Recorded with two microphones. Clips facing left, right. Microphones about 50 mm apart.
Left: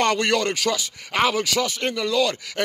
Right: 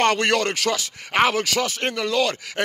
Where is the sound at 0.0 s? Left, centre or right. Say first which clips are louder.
Right 1 dB; right.